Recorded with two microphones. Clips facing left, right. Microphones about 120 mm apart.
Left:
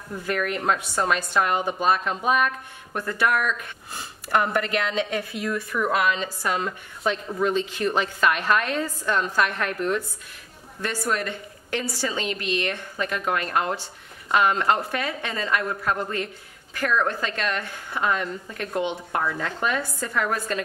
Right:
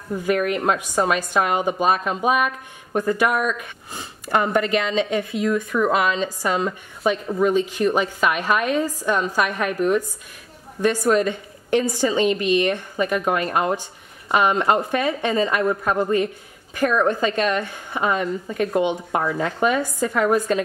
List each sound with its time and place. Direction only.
0.1 s speech: 10° right (ahead or behind)
5.7 s speech: 25° right (ahead or behind)
11.1 s speech: 20° right (ahead or behind)